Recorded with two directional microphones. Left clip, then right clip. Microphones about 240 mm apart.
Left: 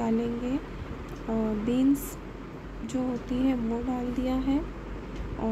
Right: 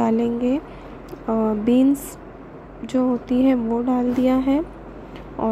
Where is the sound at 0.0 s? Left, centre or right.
Right.